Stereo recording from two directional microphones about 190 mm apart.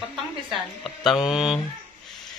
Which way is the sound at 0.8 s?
Centre (ahead or behind).